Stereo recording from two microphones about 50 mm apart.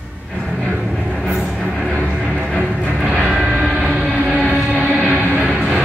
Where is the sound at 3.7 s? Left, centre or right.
Centre.